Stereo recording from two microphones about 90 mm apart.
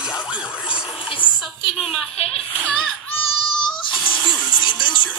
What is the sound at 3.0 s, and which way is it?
Baby cry, 65° left (ahead or behind).